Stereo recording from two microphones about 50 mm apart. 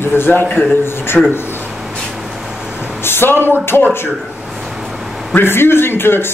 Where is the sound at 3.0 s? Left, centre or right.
Left.